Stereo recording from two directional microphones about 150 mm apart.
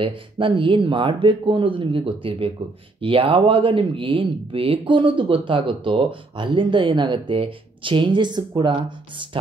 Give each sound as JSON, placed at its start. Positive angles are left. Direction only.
{"t": 0.0, "sound": "speech", "side_deg": -35}